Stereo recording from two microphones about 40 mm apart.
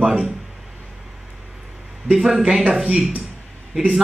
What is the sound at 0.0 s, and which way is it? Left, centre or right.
Speech, centre.